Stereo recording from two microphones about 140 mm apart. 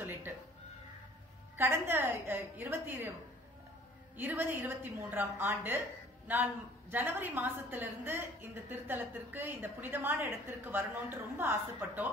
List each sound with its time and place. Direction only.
0.0 s cat: 15° right (ahead or behind)
1.6 s a woman's voice: 15° right (ahead or behind)
4.2 s a woman's voice: 15° right (ahead or behind)